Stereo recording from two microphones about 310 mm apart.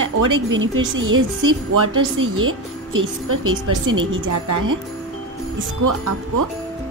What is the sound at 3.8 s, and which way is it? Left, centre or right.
Speech, right.